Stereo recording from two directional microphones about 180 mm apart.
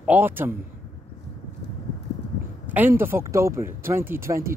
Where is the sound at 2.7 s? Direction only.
10° right (ahead or behind).